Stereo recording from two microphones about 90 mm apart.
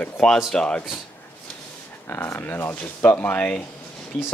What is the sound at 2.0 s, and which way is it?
Speech, 25° left (ahead or behind).